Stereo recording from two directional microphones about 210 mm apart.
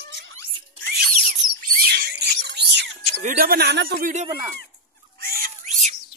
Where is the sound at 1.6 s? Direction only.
45° right (ahead or behind).